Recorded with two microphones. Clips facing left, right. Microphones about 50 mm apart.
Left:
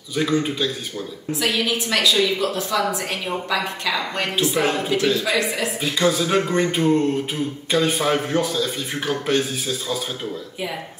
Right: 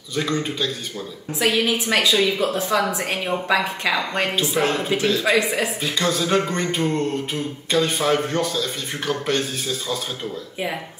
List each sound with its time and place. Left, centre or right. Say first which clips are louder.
0.1 s speech: left 3 dB; centre
1.4 s a woman's voice: right 3 dB; right
4.4 s speech: left 3 dB; centre
5.2 s a woman's voice: right 2 dB; centre
5.8 s a sound: left 2 dB; centre